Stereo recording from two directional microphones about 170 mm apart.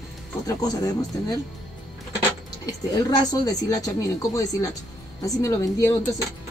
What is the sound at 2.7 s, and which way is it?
A woman's voice, 20° left (ahead or behind).